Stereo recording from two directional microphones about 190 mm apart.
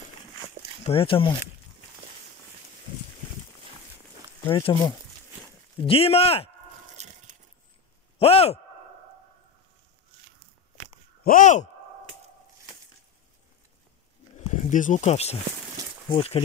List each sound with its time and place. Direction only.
0.8 s speech: 30° left (ahead or behind)
4.5 s speech: 25° left (ahead or behind)
7.0 s a sound: 35° right (ahead or behind)
8.2 s speech: 30° left (ahead or behind)
11.2 s speech: 40° left (ahead or behind)
14.3 s a sound: 40° left (ahead or behind)